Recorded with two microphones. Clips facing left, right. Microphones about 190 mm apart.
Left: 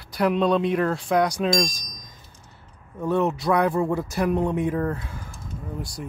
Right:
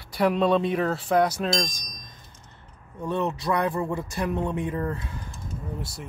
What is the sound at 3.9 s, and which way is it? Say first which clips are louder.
Mantra: left 5 dB; 5° left (ahead or behind).